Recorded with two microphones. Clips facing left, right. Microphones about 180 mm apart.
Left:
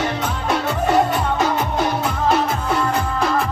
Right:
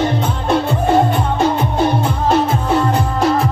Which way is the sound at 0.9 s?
25° right (ahead or behind).